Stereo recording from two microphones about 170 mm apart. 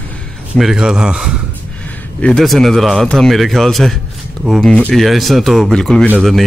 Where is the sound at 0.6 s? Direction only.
5° right (ahead or behind).